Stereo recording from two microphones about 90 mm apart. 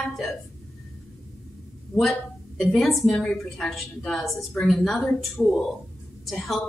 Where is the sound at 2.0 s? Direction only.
Centre (ahead or behind).